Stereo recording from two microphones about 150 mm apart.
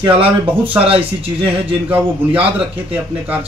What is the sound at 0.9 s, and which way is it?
Speech, 40° right (ahead or behind).